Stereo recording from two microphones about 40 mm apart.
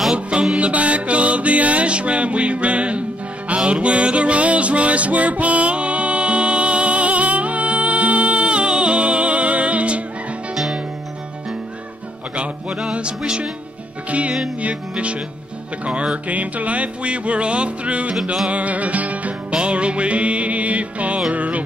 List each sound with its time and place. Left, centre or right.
0.6 s music: right
10.5 s music: centre
12.4 s music: right
19.5 s music: right